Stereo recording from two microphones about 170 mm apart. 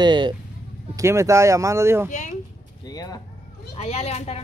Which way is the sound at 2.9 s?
20° left (ahead or behind).